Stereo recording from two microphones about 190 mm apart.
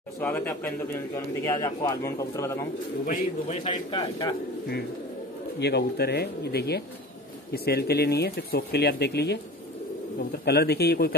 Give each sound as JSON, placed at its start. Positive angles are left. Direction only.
{"t": 0.2, "sound": "a man's voice", "side_deg": 10}
{"t": 3.1, "sound": "a man's voice", "side_deg": 35}
{"t": 5.6, "sound": "speech", "side_deg": 60}